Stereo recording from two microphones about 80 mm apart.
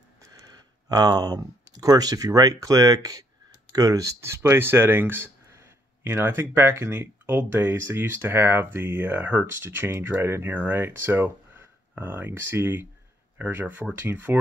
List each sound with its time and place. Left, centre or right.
0.2 s speech: right